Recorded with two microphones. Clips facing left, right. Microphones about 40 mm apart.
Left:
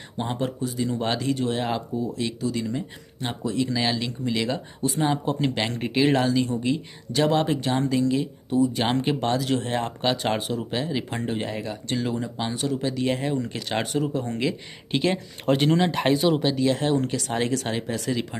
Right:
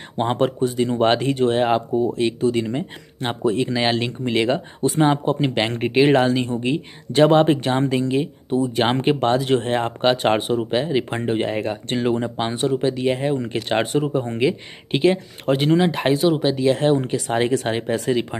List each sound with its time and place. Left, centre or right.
0.2 s speech: right
5.2 s speech: right
12.7 s speech: centre
15.0 s speech: centre; by 18.4 s right